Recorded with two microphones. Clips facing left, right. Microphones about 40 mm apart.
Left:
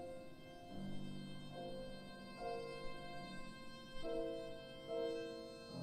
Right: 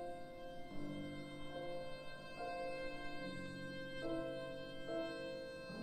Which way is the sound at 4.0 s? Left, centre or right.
Right.